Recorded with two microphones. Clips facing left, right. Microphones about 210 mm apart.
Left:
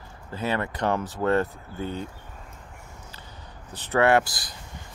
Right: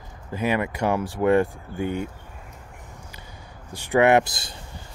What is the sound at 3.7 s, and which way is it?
Speech, 15° right (ahead or behind).